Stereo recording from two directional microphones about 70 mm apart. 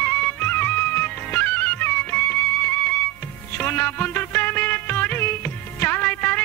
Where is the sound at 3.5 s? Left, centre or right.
Left.